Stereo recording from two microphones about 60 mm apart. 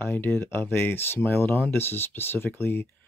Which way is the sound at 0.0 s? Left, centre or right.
Left.